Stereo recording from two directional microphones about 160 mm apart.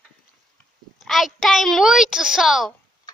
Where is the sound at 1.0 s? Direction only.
Centre (ahead or behind).